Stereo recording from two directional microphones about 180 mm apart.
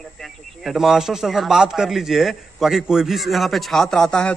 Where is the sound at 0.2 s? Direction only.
Centre (ahead or behind).